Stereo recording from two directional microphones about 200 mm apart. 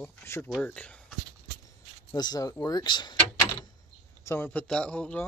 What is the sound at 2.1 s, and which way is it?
Speech, 20° left (ahead or behind).